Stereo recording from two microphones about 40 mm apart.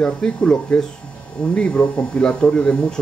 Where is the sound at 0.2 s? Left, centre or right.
Centre.